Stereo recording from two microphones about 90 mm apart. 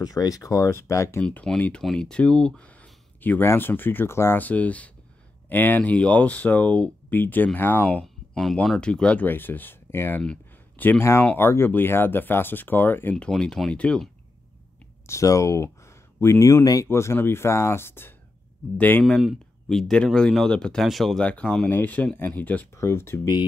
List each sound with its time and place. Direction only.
0.0 s speech: 40° left (ahead or behind)
1.2 s speech: 10° left (ahead or behind)
13.1 s speech: 10° left (ahead or behind)
15.0 s speech: 35° left (ahead or behind)
19.0 s speech: 5° left (ahead or behind)
21.2 s speech: 15° left (ahead or behind)
21.6 s speech: 20° left (ahead or behind)
22.8 s speech: 30° left (ahead or behind)